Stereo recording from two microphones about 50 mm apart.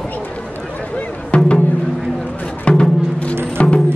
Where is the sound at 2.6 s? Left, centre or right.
Left.